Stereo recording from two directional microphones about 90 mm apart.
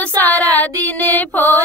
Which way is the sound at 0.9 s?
20° left (ahead or behind).